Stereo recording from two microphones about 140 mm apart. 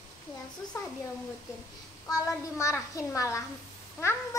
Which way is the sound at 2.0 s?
25° left (ahead or behind).